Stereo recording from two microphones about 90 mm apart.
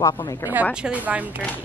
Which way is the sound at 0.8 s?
15° right (ahead or behind).